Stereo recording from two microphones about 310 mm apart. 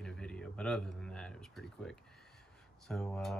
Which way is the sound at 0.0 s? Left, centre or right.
Centre.